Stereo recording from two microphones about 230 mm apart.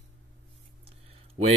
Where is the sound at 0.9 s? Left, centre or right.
Right.